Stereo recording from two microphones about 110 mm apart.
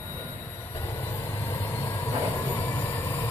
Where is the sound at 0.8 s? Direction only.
25° left (ahead or behind).